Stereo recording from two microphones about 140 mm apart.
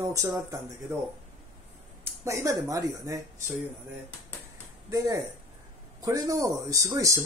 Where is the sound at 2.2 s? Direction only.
20° right (ahead or behind).